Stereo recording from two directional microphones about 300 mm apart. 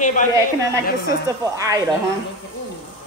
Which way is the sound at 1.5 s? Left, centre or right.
Centre.